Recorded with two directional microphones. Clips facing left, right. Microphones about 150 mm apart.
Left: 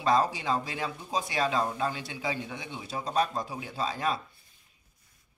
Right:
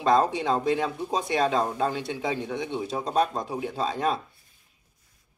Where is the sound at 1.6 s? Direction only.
30° right (ahead or behind).